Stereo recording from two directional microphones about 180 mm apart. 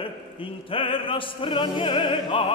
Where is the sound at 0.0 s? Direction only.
30° left (ahead or behind).